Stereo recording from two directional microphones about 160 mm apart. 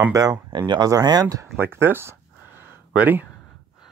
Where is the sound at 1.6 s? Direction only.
15° right (ahead or behind).